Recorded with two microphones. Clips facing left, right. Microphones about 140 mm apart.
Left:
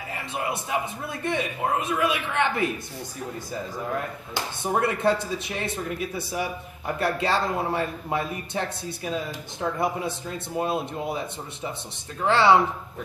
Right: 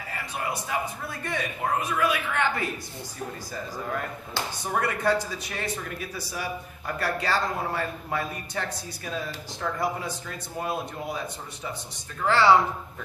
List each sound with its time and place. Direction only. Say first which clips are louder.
0.1 s a man's voice: left 2 dB; 20° left (ahead or behind)
4.3 s speech: left 3 dB; 20° left (ahead or behind)